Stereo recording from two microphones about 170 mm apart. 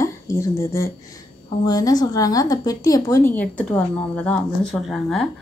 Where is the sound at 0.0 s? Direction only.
20° left (ahead or behind).